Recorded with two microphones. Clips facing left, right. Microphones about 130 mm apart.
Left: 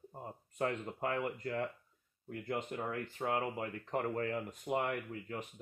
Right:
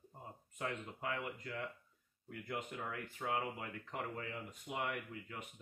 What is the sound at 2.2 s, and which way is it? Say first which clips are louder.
Speech: left 5 dB; 30° left (ahead or behind).